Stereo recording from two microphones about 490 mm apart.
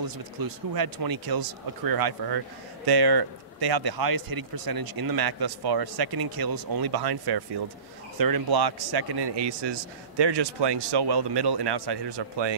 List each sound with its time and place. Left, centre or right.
0.4 s speech: right